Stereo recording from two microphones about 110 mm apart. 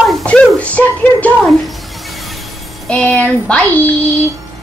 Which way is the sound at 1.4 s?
Centre (ahead or behind).